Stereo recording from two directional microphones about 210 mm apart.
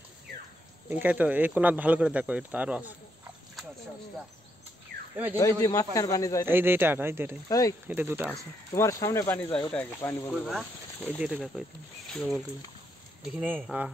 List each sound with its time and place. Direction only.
0.8 s speech: 5° right (ahead or behind)
5.1 s speech: 10° right (ahead or behind)
5.4 s speech: 15° left (ahead or behind)
6.4 s speech: 10° right (ahead or behind)
7.4 s speech: 15° left (ahead or behind)
7.9 s speech: 10° right (ahead or behind)
8.7 s speech: 15° left (ahead or behind); by 13.8 s 5° right (ahead or behind)